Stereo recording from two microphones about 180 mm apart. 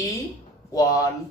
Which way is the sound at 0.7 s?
20° left (ahead or behind).